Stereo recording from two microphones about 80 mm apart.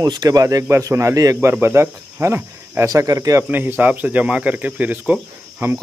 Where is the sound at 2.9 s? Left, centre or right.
Right.